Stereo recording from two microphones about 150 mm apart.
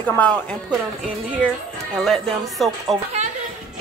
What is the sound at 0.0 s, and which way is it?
Speech, 10° left (ahead or behind).